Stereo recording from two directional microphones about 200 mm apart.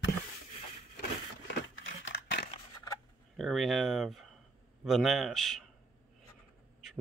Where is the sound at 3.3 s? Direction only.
Centre (ahead or behind).